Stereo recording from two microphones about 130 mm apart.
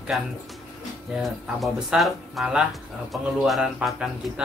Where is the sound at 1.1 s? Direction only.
5° right (ahead or behind).